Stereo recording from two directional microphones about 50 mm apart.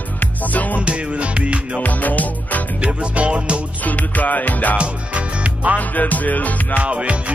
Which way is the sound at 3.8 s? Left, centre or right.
Left.